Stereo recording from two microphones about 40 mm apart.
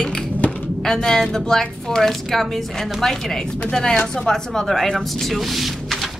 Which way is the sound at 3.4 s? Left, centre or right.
Left.